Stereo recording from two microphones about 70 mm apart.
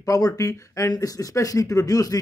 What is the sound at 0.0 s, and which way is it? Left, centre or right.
Speech, left.